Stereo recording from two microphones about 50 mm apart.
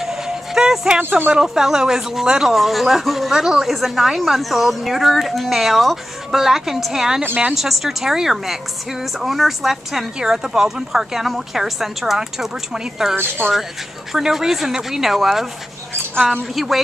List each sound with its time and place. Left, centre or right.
0.0 s a sound: centre
1.3 s a woman's voice: centre
13.4 s speech: right
14.1 s a woman's voice: centre